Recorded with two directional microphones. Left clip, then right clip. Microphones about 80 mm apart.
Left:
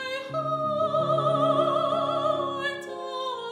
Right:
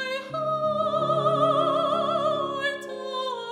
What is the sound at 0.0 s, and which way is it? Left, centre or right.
Music, right.